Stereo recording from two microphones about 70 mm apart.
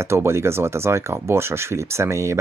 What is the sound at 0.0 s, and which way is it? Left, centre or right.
Speech, right.